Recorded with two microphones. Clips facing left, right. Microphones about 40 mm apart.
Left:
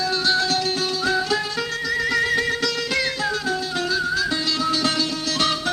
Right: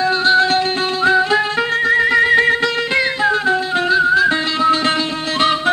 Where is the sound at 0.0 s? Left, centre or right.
Right.